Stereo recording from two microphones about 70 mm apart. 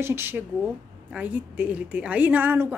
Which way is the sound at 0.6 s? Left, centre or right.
Centre.